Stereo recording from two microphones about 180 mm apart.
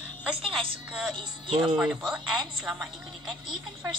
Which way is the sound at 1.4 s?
30° right (ahead or behind).